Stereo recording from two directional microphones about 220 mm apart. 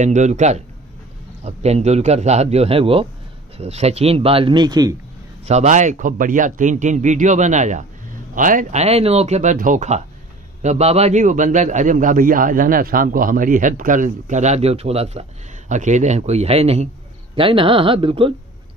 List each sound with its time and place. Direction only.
0.0 s a man's voice: 30° right (ahead or behind)
5.4 s a man's voice: 30° right (ahead or behind)